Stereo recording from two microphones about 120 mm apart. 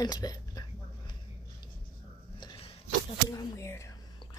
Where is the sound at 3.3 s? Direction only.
30° left (ahead or behind).